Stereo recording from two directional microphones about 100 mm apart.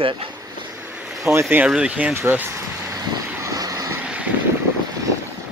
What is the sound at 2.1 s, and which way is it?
Speech, 20° right (ahead or behind).